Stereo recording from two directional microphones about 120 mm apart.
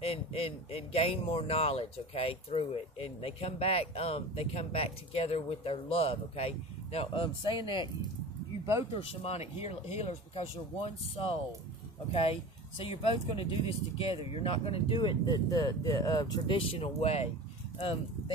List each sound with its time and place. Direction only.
0.0 s speech: 50° left (ahead or behind)
7.4 s speech: 40° left (ahead or behind)
8.9 s speech: 55° left (ahead or behind)